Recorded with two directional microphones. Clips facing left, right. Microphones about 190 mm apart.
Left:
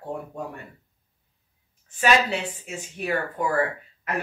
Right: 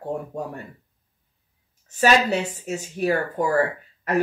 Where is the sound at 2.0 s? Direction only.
40° right (ahead or behind).